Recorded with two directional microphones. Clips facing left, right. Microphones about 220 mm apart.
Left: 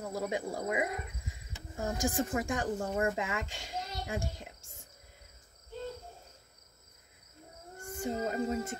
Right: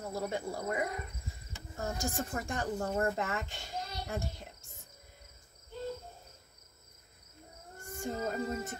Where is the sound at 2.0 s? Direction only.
90° left.